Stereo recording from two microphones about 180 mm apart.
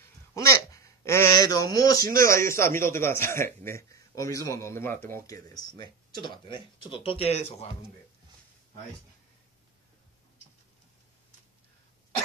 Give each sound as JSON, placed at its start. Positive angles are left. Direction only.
{"t": 0.3, "sound": "speech", "side_deg": 15}